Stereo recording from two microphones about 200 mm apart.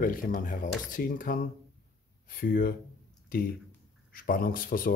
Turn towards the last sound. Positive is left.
turn(degrees=45)  # may be behind; listen again after turning